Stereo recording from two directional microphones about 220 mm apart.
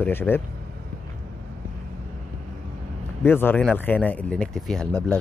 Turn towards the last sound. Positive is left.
turn(degrees=5)  # may be behind; listen again after turning